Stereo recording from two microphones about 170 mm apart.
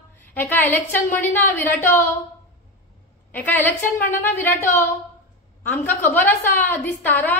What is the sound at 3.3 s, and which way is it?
A woman's voice, 10° left (ahead or behind).